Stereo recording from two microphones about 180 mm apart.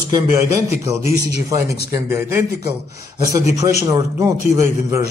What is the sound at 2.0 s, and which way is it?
Speech, 15° right (ahead or behind).